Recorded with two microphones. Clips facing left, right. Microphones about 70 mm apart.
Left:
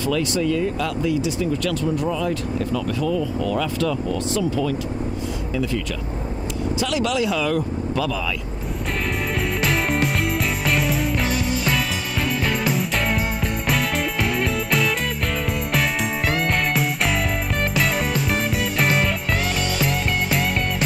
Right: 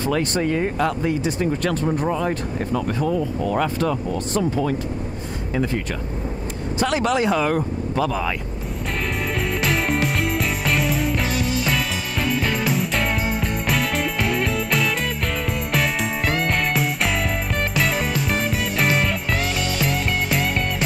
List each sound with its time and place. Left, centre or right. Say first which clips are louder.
0.0 s speech: even; right
6.8 s speech: right 3 dB; right
9.6 s music: even; centre